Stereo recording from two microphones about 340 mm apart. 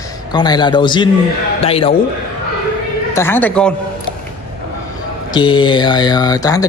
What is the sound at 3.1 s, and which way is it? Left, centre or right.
Speech, centre.